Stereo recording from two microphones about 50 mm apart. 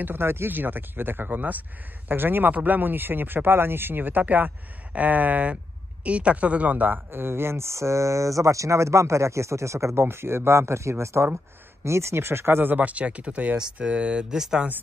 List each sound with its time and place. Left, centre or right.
0.0 s speech: right
7.1 s speech: right
10.0 s speech: right
12.7 s speech: right; by 14.7 s centre